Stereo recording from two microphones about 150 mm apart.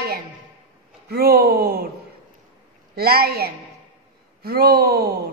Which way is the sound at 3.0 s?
90° right.